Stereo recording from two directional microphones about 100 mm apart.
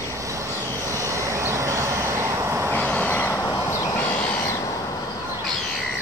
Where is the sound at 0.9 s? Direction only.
30° right (ahead or behind).